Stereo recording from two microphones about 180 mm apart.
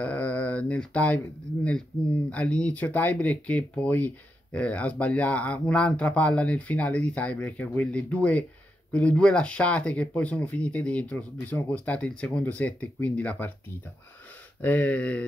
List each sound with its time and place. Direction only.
0.0 s a sound: 10° left (ahead or behind)
2.2 s speech: 5° left (ahead or behind)
14.6 s speech: 10° left (ahead or behind)